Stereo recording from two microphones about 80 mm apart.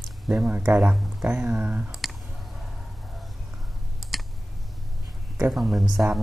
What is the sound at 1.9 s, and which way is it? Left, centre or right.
Clicking, centre.